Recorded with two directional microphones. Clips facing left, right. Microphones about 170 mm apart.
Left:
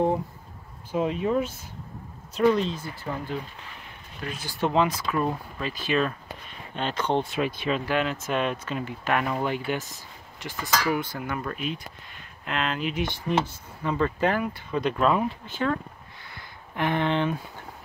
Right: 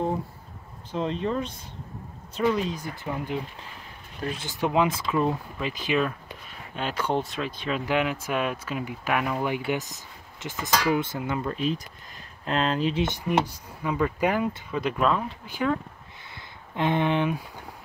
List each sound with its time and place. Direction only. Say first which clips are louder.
0.9 s speech: left 3 dB; 10° left (ahead or behind)
2.6 s speech: even; 15° right (ahead or behind)
4.5 s speech: left 1 dB; 10° right (ahead or behind)
7.3 s speech: left 4 dB; 10° left (ahead or behind)
7.8 s speech: right 1 dB; 15° right (ahead or behind)
12.4 s speech: right 4 dB; 35° right (ahead or behind)
13.8 s speech: even; 10° right (ahead or behind)
15.0 s speech: left 3 dB; 5° left (ahead or behind)
15.4 s speech: right 1 dB; 10° right (ahead or behind)
16.3 s a sound: even; 20° right (ahead or behind)